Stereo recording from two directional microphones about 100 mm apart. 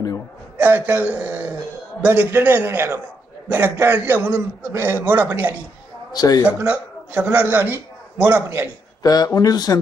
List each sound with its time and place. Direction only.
0.6 s a man's voice: 20° right (ahead or behind)
6.1 s speech: 40° left (ahead or behind)
6.4 s a man's voice: 15° right (ahead or behind)
9.0 s speech: 40° left (ahead or behind)